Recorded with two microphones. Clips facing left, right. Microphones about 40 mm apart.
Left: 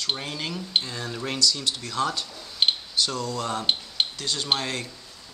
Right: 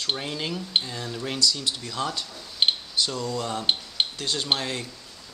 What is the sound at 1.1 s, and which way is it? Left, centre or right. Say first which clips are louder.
Speech: left 1 dB; centre.